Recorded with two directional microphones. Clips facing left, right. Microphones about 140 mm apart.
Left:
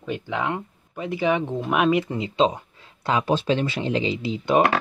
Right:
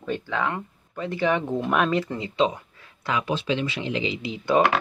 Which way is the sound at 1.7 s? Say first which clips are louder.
Left 3 dB; 10° left (ahead or behind).